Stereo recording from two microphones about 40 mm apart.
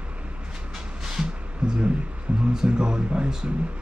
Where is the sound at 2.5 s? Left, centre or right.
Centre.